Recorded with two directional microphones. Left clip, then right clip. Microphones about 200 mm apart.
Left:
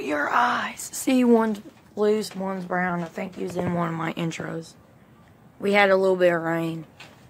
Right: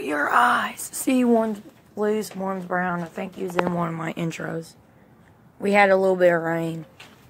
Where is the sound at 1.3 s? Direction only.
15° left (ahead or behind).